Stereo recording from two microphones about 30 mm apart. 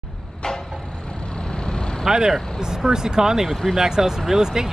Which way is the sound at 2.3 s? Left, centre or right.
Centre.